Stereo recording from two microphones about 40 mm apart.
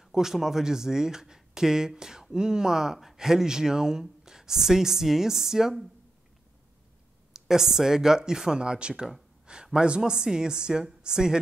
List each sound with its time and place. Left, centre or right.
0.0 s speech: centre
7.3 s speech: centre